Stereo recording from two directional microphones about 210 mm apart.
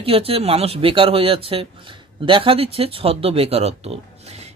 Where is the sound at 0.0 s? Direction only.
25° right (ahead or behind).